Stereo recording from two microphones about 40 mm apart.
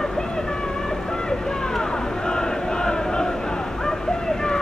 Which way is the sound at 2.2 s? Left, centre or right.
Centre.